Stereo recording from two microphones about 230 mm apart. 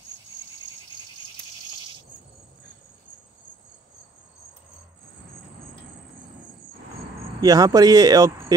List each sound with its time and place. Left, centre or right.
7.3 s speech: centre